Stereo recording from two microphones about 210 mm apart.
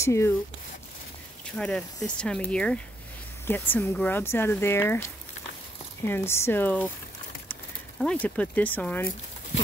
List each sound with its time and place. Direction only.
0.0 s speech: 15° left (ahead or behind)
1.4 s speech: 5° left (ahead or behind)
8.0 s speech: 5° left (ahead or behind)